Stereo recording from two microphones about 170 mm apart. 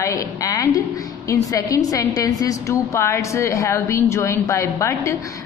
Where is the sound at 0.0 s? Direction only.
20° left (ahead or behind).